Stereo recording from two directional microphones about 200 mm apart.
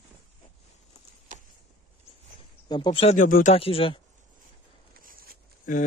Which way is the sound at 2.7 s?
25° left (ahead or behind).